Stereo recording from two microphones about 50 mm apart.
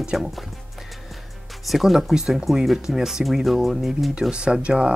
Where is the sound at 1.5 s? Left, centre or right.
Centre.